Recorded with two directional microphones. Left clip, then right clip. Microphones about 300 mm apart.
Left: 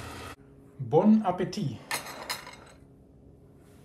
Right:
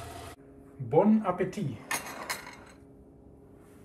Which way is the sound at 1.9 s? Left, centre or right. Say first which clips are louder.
Even; centre.